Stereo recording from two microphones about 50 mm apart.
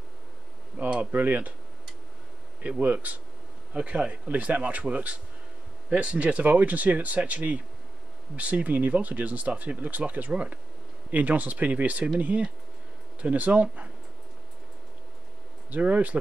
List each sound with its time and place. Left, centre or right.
0.8 s speech: right
2.8 s speech: right
15.7 s speech: right